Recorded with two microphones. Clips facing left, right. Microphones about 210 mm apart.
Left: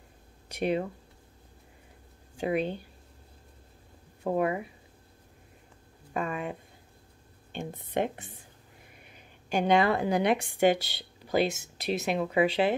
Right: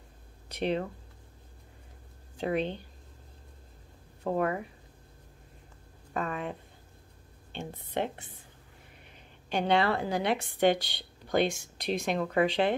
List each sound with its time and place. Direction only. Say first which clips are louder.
0.5 s speech: left 2 dB; 10° left (ahead or behind)
2.3 s a woman's voice: left 1 dB; 10° left (ahead or behind)
4.2 s a woman's voice: left 2 dB; 10° left (ahead or behind)
6.1 s a woman's voice: left 1 dB; 10° left (ahead or behind)
7.8 s a woman's voice: left 3 dB; 20° left (ahead or behind)
9.5 s a woman's voice: left 2 dB; 10° left (ahead or behind)